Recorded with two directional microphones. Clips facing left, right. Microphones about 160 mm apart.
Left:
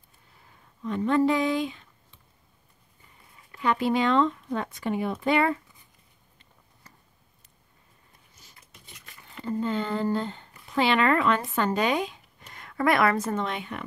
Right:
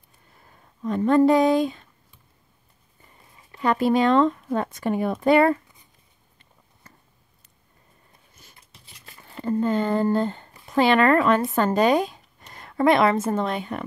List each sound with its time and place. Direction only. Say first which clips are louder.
0.8 s speech: right 5 dB; 40° right (ahead or behind)
3.5 s speech: right 4 dB; 40° right (ahead or behind)
8.5 s a sound: left 1 dB; 30° right (ahead or behind)
9.4 s speech: right 6 dB; 50° right (ahead or behind); by 13.4 s 25° right (ahead or behind)
13.4 s speech: right 5 dB; 40° right (ahead or behind)